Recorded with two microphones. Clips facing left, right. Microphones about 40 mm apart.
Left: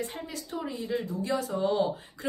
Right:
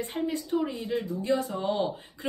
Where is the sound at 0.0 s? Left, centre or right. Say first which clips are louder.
Right 6 dB; right.